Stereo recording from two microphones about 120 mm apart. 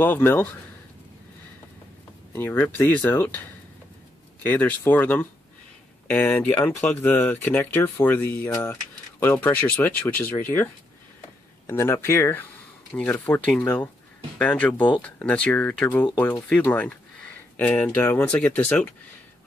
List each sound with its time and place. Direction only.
0.0 s speech: 15° left (ahead or behind)
2.3 s speech: 15° left (ahead or behind)
14.4 s speech: 15° left (ahead or behind)